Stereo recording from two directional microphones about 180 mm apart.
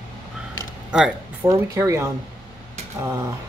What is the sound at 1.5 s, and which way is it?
Speech, 15° right (ahead or behind).